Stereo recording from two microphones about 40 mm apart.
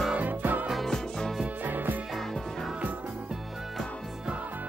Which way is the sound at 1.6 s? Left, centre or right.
Right.